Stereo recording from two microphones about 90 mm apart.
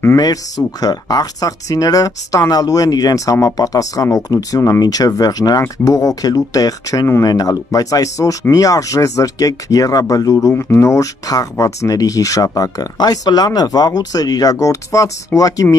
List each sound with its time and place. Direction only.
0.2 s speech: 45° left (ahead or behind)
10.5 s speech: 25° left (ahead or behind)